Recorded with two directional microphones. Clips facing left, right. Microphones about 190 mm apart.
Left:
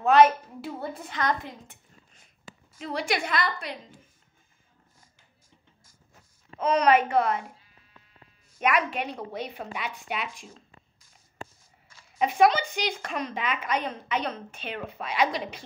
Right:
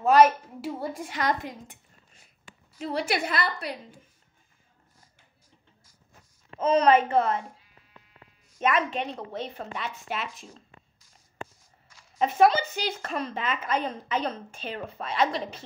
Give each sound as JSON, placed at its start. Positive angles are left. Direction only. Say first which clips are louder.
{"t": 0.0, "sound": "a woman's voice", "louder": "even", "side_deg": -5}
{"t": 6.6, "sound": "a woman's voice", "louder": "right 1 dB", "side_deg": -30}
{"t": 8.9, "sound": "speech", "louder": "even", "side_deg": 5}
{"t": 12.0, "sound": "a sound", "louder": "even", "side_deg": 5}
{"t": 12.6, "sound": "speech", "louder": "left 1 dB", "side_deg": -5}
{"t": 13.7, "sound": "a woman's voice", "louder": "right 1 dB", "side_deg": -30}